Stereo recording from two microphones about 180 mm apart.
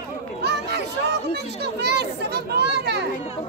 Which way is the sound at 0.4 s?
70° right (ahead or behind).